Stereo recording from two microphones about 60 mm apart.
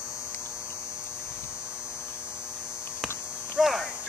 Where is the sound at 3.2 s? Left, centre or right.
Centre.